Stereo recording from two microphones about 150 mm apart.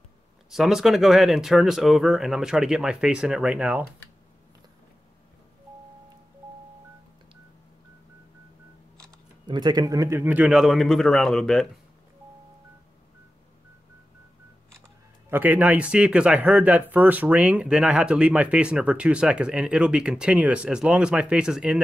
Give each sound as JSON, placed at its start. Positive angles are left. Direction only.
{"t": 0.5, "sound": "speech", "side_deg": -5}
{"t": 9.5, "sound": "speech", "side_deg": -30}
{"t": 15.2, "sound": "speech", "side_deg": -10}